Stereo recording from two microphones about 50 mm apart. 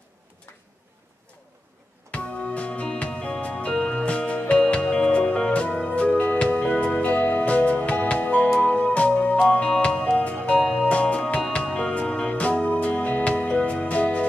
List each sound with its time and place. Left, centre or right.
2.0 s music: left
10.1 s music: left
10.6 s music: centre
10.9 s music: left